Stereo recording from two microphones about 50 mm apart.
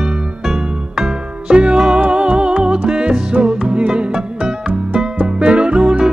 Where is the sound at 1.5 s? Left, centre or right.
Right.